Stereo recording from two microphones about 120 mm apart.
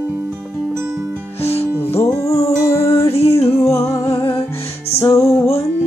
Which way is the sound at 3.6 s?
25° left (ahead or behind).